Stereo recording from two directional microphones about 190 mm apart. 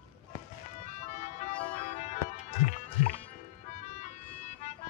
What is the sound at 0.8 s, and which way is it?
Music, 40° left (ahead or behind).